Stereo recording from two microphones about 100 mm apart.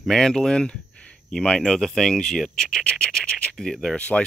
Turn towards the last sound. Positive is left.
turn(degrees=10)  # may be behind; listen again after turning